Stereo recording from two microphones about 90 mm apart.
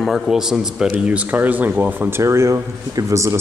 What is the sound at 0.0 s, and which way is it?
Speech, 5° right (ahead or behind).